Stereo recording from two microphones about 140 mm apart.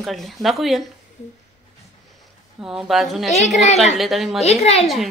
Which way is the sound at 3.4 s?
55° left (ahead or behind).